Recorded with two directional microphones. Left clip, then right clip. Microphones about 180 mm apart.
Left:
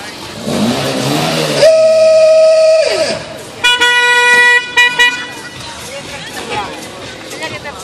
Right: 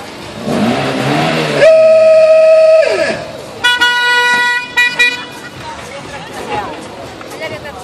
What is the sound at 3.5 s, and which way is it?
Vehicle, 55° right (ahead or behind).